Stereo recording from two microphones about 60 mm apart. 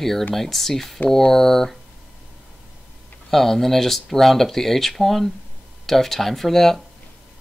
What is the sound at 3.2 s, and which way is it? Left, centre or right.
Speech, centre.